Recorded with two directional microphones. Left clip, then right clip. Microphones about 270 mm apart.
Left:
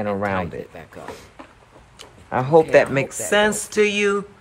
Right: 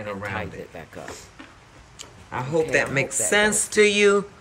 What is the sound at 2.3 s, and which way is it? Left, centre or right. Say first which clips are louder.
Speech: left 8 dB; centre.